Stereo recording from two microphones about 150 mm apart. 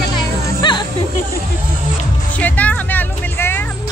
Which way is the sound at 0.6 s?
30° left (ahead or behind).